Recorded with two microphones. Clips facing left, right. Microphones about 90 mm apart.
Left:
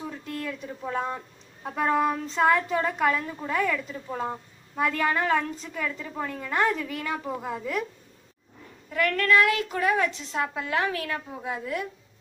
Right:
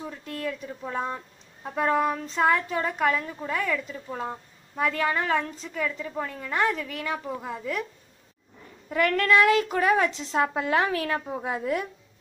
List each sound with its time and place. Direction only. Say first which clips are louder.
0.5 s a woman's voice: right 2 dB; centre (ahead or behind)
8.9 s a woman's voice: right 1 dB; 25° right (ahead or behind)